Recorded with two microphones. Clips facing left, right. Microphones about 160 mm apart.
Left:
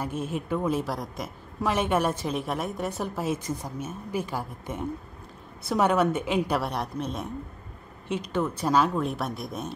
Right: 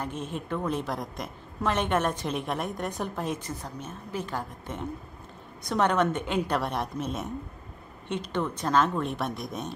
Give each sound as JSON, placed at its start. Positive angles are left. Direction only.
{"t": 0.0, "sound": "a woman's voice", "side_deg": 10}